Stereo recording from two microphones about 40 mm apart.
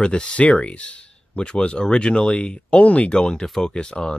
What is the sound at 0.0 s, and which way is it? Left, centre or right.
Speech, left.